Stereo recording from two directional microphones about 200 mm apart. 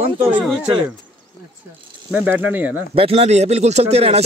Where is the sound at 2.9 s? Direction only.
30° right (ahead or behind).